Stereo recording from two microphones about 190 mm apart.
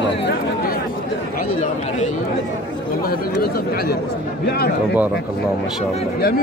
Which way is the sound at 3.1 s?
50° left (ahead or behind).